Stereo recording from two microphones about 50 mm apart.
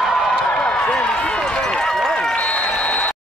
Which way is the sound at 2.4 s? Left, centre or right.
Left.